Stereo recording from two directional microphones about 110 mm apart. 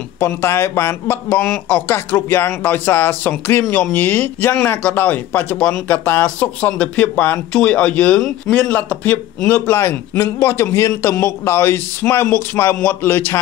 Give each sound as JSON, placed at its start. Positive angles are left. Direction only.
{"t": 0.2, "sound": "speech", "side_deg": 25}
{"t": 9.8, "sound": "a man's voice", "side_deg": 25}